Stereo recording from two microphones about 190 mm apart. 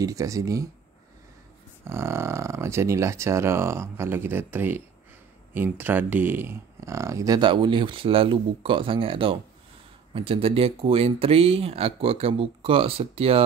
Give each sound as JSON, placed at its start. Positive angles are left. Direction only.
{"t": 0.0, "sound": "speech", "side_deg": -15}
{"t": 1.9, "sound": "speech", "side_deg": -15}